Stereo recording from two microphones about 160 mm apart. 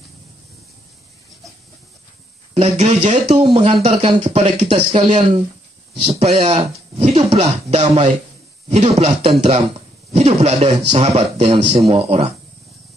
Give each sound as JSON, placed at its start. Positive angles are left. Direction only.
{"t": 2.5, "sound": "a man's voice", "side_deg": -40}